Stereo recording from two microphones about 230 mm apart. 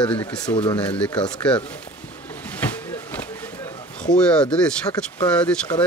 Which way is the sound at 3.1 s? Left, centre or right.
Centre.